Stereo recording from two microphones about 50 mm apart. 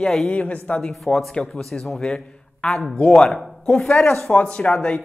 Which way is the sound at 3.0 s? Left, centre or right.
Centre.